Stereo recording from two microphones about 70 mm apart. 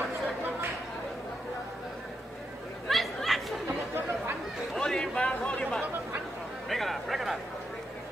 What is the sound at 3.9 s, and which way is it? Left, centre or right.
Chatter, right.